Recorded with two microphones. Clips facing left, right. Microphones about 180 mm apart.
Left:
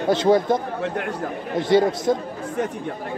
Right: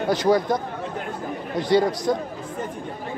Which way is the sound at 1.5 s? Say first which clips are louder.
Left 2 dB; 20° left (ahead or behind).